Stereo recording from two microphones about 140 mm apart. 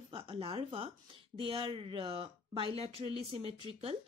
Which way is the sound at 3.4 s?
45° right (ahead or behind).